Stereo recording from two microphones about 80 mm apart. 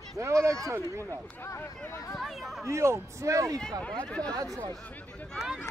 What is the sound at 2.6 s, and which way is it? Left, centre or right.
Speech, right.